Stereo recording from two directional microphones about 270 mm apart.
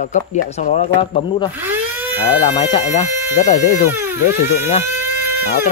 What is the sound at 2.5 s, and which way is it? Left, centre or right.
Speech, centre.